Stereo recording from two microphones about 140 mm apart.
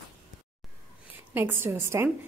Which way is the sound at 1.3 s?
15° right (ahead or behind).